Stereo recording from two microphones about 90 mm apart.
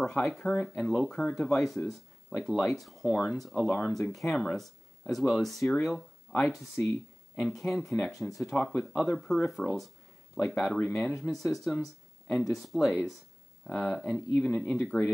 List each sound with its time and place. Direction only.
0.0 s speech: 5° left (ahead or behind)
3.6 s speech: 15° left (ahead or behind)
3.9 s speech: centre (ahead or behind)